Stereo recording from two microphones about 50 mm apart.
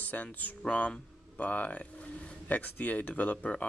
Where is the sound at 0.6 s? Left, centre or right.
Left.